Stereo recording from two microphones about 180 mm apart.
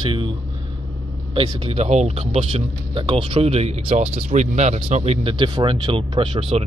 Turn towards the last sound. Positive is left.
turn(degrees=-30)  # may be behind; listen again after turning